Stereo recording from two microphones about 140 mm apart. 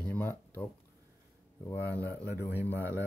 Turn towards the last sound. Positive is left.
turn(degrees=15)  # may be behind; listen again after turning